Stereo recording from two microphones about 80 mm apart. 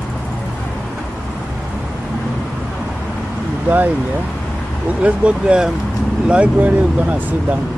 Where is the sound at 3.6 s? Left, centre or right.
Right.